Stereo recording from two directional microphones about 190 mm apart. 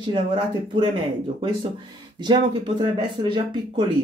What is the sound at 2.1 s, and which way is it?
Speech, 25° right (ahead or behind).